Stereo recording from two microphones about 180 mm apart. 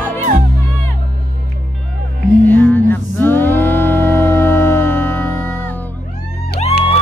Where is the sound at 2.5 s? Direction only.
10° left (ahead or behind).